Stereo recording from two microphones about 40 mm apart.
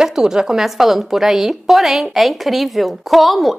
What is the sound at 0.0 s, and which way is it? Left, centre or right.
A woman's voice, centre.